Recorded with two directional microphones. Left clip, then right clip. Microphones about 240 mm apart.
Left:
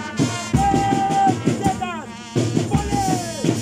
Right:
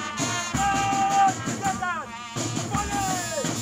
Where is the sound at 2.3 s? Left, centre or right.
Left.